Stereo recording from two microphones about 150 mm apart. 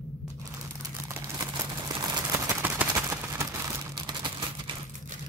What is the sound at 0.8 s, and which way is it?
Crumpling, 20° right (ahead or behind).